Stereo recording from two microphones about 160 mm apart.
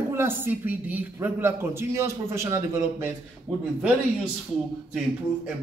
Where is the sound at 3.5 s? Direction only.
5° right (ahead or behind).